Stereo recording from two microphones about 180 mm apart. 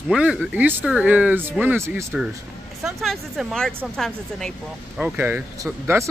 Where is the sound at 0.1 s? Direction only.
5° right (ahead or behind).